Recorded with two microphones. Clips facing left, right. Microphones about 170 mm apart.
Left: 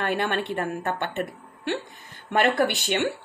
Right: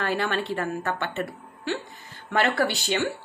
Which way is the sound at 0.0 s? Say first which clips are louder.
Left 1 dB; 55° left (ahead or behind).